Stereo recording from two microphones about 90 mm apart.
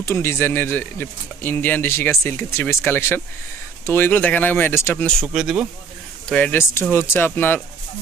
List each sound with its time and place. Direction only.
0.0 s speech: 30° left (ahead or behind)
5.3 s speech: 5° right (ahead or behind)
6.2 s speech: 15° left (ahead or behind)